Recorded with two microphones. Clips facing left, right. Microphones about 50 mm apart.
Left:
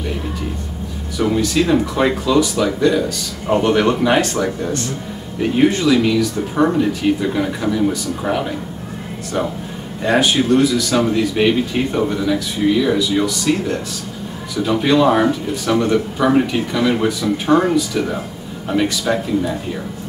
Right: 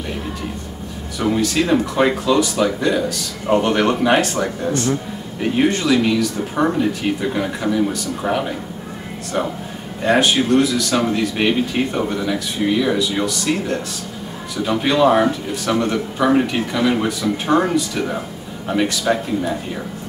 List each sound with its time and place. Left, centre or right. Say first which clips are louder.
1.1 s speech: left 2 dB; centre
10.0 s speech: left 1 dB; centre